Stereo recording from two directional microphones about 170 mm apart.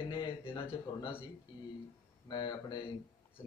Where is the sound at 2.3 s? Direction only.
25° left (ahead or behind).